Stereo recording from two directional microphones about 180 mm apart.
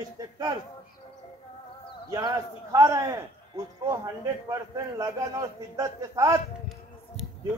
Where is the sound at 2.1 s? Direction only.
20° right (ahead or behind).